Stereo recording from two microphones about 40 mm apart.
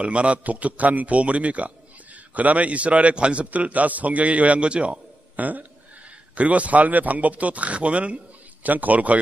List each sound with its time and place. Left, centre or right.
0.0 s a man's voice: right
5.3 s a woman's voice: right
8.6 s a man's voice: right